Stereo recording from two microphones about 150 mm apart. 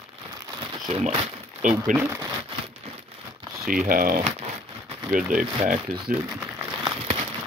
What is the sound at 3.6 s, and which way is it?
Speech, 65° right (ahead or behind).